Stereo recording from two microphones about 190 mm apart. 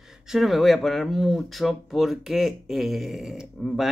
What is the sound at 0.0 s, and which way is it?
Speech, 5° right (ahead or behind).